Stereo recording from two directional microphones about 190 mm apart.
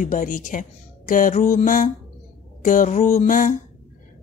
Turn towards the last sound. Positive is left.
turn(degrees=45)  # may be behind; listen again after turning